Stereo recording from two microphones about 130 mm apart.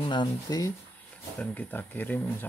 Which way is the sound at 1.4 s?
15° left (ahead or behind).